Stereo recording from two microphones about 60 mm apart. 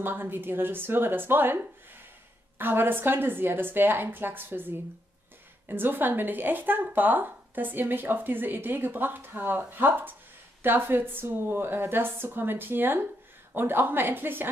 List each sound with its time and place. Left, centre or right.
0.0 s a woman's voice: right